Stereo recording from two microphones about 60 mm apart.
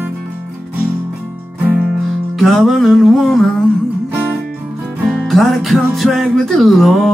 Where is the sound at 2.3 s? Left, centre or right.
Centre.